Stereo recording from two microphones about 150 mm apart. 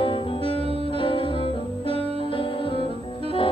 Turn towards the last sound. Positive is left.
turn(degrees=35)  # may be behind; listen again after turning